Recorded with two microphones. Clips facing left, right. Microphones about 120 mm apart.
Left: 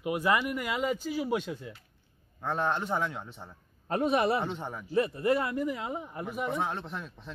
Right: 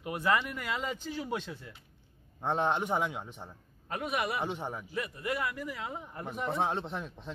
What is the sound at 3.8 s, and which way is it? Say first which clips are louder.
Speech: left 7 dB; 30° left (ahead or behind).